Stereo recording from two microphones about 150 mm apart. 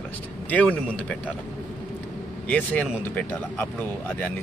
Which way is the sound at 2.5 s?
10° left (ahead or behind).